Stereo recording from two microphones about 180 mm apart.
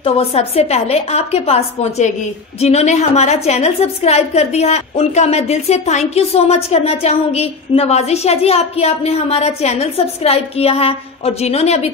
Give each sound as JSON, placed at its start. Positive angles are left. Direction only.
{"t": 0.0, "sound": "a woman's voice", "side_deg": 35}